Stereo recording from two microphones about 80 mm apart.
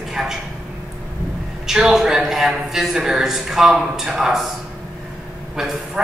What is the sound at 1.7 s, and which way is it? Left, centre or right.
A man's voice, centre.